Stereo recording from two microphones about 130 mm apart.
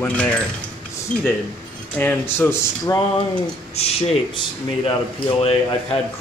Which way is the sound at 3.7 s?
50° left (ahead or behind).